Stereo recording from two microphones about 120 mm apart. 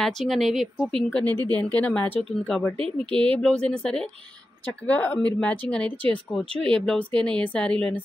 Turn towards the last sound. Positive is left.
turn(degrees=10)  # may be behind; listen again after turning